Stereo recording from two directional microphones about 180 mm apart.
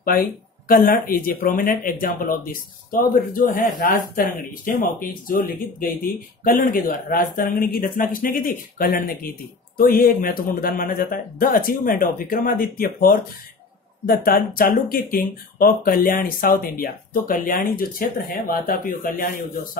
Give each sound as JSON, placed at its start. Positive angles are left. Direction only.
{"t": 0.7, "sound": "speech", "side_deg": 55}